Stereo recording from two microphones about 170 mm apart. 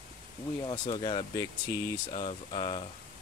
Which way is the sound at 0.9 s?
30° left (ahead or behind).